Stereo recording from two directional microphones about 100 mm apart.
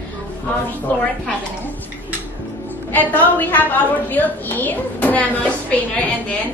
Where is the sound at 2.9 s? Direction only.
15° left (ahead or behind).